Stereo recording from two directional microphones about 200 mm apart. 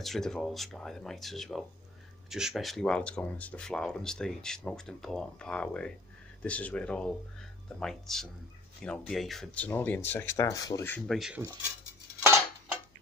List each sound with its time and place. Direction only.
0.0 s speech: centre (ahead or behind)
11.1 s speech: centre (ahead or behind)